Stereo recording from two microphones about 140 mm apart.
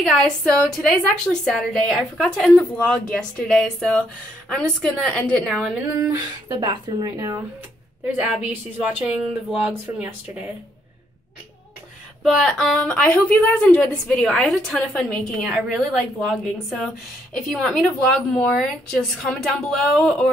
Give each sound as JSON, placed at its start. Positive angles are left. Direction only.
{"t": 0.0, "sound": "a woman's voice", "side_deg": 5}
{"t": 6.5, "sound": "a woman's voice", "side_deg": -30}
{"t": 8.2, "sound": "speech", "side_deg": -10}
{"t": 12.2, "sound": "a sound", "side_deg": -5}
{"t": 12.4, "sound": "a woman's voice", "side_deg": 5}